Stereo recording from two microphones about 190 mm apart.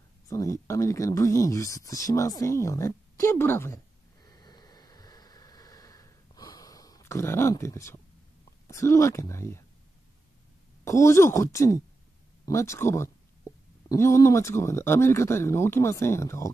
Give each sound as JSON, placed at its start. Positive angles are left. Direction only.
{"t": 0.3, "sound": "a sound", "side_deg": 15}
{"t": 8.6, "sound": "speech", "side_deg": 15}
{"t": 10.8, "sound": "speech", "side_deg": 15}